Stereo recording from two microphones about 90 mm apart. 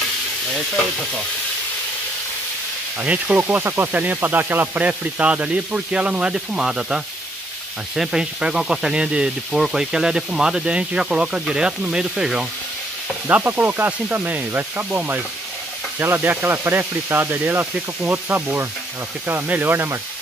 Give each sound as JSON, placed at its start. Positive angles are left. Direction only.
{"t": 3.0, "sound": "speech", "side_deg": -15}
{"t": 13.3, "sound": "speech", "side_deg": -20}